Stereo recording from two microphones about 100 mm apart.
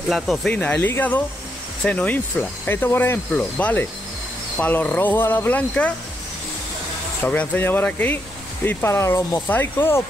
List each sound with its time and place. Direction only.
0.1 s speech: centre (ahead or behind)
0.5 s speech: 10° left (ahead or behind)
7.2 s speech: 20° left (ahead or behind)